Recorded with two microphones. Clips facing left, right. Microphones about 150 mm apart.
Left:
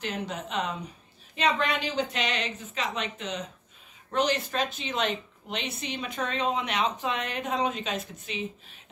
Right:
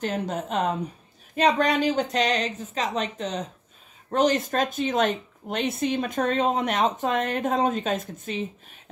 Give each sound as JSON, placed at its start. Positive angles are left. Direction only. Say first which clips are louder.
{"t": 0.0, "sound": "speech", "louder": "right 6 dB", "side_deg": -45}